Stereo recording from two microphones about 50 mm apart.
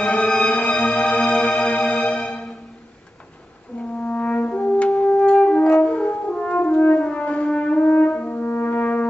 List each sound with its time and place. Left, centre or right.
0.2 s music: centre
4.0 s french horn: left
4.7 s music: left
5.7 s french horn: left
7.8 s french horn: left